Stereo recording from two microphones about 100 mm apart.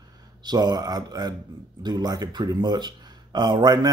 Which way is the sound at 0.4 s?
45° right (ahead or behind).